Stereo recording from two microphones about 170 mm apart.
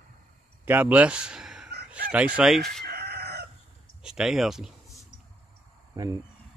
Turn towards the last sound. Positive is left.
turn(degrees=-25)  # may be behind; listen again after turning